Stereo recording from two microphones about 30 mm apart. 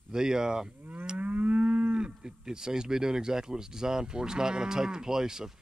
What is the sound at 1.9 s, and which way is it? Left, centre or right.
Speech, right.